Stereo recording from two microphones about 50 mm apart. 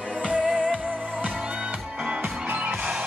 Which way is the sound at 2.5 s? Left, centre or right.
Right.